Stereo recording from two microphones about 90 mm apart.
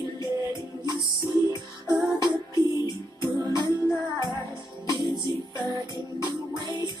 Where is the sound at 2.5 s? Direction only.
45° left (ahead or behind).